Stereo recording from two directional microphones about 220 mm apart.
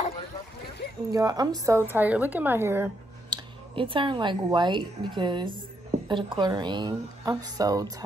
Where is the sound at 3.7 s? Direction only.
25° right (ahead or behind).